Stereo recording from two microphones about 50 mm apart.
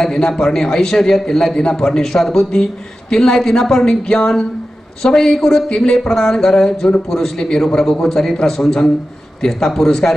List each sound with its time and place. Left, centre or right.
0.0 s a man's voice: centre